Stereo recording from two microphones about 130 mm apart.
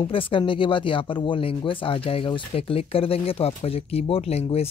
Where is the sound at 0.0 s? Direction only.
40° left (ahead or behind).